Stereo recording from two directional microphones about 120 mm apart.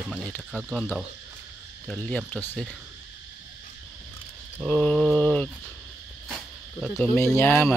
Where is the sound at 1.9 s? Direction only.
10° left (ahead or behind).